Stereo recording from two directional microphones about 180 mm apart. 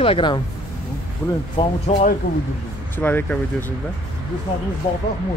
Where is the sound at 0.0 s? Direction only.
30° left (ahead or behind).